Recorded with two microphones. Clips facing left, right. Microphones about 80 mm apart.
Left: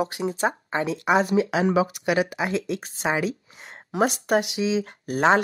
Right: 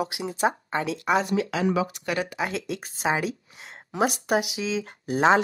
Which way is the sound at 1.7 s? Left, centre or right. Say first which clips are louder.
Left 4 dB; centre.